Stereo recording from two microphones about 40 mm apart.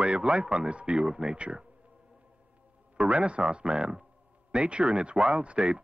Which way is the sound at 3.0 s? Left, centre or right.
Right.